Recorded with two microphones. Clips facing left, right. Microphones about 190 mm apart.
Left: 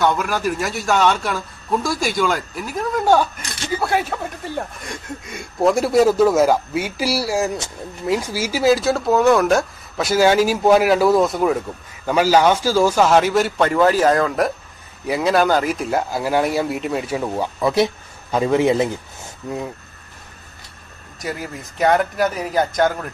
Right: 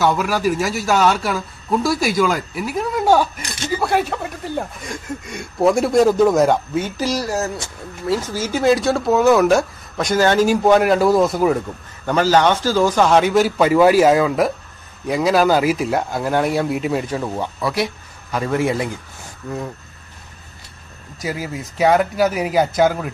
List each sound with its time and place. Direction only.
0.0 s speech: 5° right (ahead or behind)
17.6 s a man's voice: 25° left (ahead or behind)
21.2 s speech: centre (ahead or behind)